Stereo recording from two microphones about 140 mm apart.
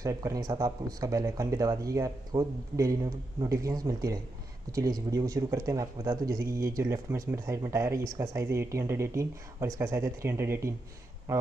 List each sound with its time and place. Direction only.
0.0 s speech: 25° right (ahead or behind)